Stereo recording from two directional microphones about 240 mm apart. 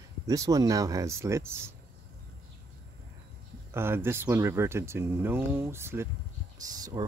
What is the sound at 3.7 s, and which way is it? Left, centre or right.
Speech, centre.